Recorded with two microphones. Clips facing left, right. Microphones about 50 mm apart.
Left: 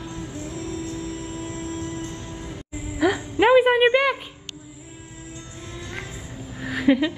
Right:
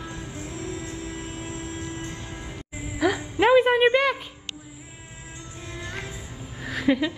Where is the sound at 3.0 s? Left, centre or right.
Centre.